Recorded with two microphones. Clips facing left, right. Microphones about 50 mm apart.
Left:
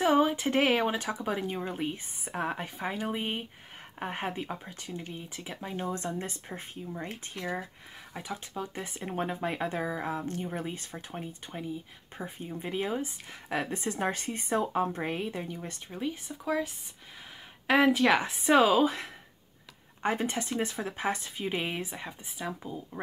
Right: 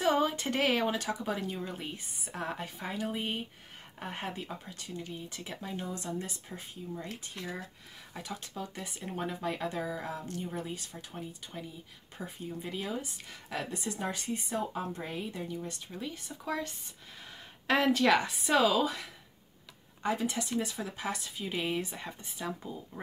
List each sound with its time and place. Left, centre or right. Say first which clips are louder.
0.0 s speech: left 4 dB; centre
5.3 s speech: left 1 dB; centre
5.8 s speech: left 5 dB; left
8.1 s speech: left 3 dB; centre
8.8 s speech: left 3 dB; left
13.9 s speech: left 3 dB; left
16.3 s speech: left 3 dB; centre
18.2 s speech: left 4 dB; left